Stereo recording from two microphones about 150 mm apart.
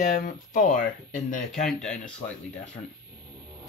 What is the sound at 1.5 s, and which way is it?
Speech, 5° left (ahead or behind).